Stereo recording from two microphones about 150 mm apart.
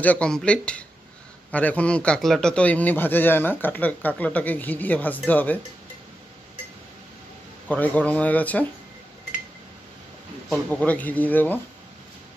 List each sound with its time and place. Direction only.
0.0 s a man's voice: 10° left (ahead or behind)
7.7 s a man's voice: 10° left (ahead or behind)
10.5 s a man's voice: 10° left (ahead or behind)